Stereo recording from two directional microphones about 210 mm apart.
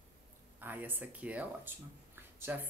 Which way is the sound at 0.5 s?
10° right (ahead or behind).